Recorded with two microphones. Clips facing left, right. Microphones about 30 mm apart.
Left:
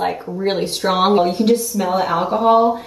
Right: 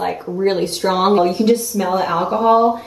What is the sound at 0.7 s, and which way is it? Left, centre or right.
Speech, centre.